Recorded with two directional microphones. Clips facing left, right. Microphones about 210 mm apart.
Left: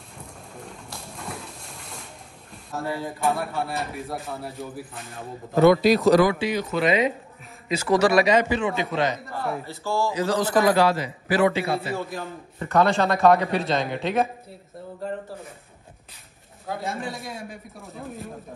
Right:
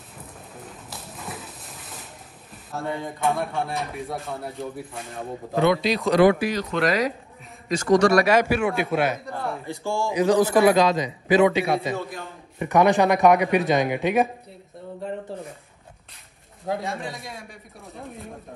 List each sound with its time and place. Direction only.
0.2 s a sound: 5° right (ahead or behind)
2.5 s a man's voice: centre (ahead or behind)
5.6 s speech: 45° left (ahead or behind)
6.5 s a man's voice: 5° left (ahead or behind)
8.4 s a man's voice: 10° right (ahead or behind)
15.0 s a man's voice: centre (ahead or behind)
16.8 s a man's voice: centre (ahead or behind)